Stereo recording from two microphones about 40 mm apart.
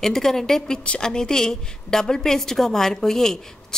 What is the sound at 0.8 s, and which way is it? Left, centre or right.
Speech, left.